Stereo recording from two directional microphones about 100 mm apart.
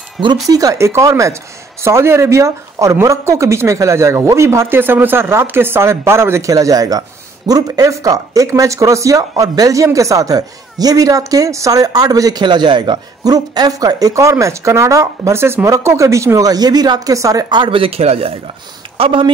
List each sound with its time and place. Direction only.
0.5 s speech: 35° right (ahead or behind)
17.6 s speech: 65° right (ahead or behind); by 18.3 s 85° right
18.9 s speech: 55° right (ahead or behind)